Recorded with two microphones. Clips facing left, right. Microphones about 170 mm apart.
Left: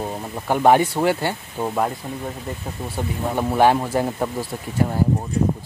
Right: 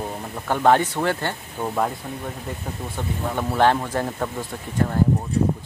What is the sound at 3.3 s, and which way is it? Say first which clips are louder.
Speech: left 2 dB; 15° left (ahead or behind).